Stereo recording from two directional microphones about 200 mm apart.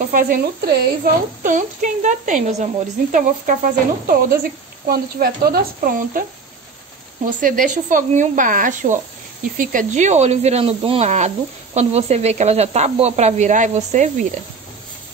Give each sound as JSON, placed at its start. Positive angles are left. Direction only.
{"t": 0.0, "sound": "speech", "side_deg": -45}
{"t": 7.2, "sound": "speech", "side_deg": -40}